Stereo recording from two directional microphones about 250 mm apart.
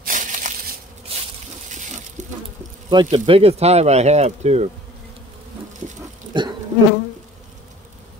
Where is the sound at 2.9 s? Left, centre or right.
Centre.